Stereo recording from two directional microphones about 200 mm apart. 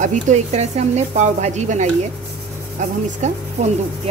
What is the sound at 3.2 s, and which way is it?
Speech, 35° right (ahead or behind).